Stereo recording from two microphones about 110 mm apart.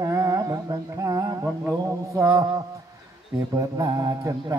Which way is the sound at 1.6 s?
25° right (ahead or behind).